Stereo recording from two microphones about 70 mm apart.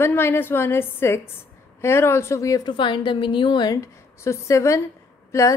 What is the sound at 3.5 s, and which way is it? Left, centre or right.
Speech, left.